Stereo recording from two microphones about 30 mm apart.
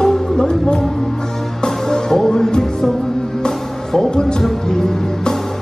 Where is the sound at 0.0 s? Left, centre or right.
Centre.